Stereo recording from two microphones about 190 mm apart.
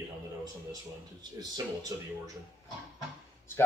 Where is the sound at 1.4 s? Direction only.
20° right (ahead or behind).